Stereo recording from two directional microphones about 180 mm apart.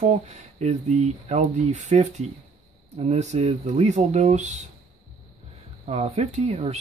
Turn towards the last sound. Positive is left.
turn(degrees=-35)  # may be behind; listen again after turning